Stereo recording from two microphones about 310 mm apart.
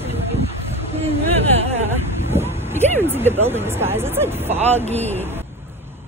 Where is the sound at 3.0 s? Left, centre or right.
Centre.